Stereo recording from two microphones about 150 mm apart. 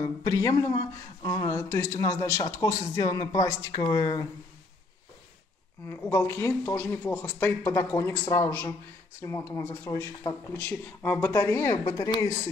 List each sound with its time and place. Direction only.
0.0 s speech: 25° left (ahead or behind)
5.9 s speech: 15° left (ahead or behind)